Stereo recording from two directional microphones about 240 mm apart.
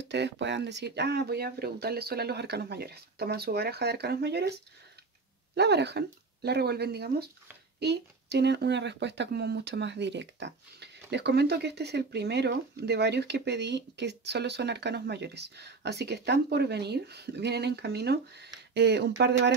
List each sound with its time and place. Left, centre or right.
0.1 s speech: right